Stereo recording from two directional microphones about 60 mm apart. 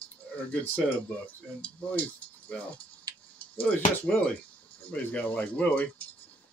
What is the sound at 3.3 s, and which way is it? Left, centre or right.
Speech, left.